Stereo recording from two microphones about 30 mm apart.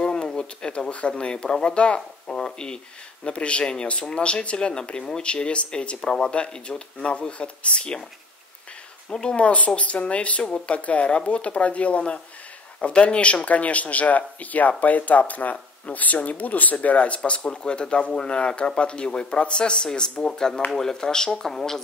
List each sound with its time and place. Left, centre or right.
0.0 s speech: left
2.3 s speech: left
3.3 s speech: left
5.9 s speech: left
7.0 s speech: left
9.1 s speech: left
13.5 s speech: left
16.8 s speech: left
17.5 s speech: left; by 21.8 s centre